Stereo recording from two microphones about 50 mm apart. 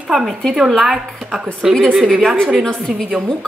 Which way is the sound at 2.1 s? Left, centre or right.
Centre.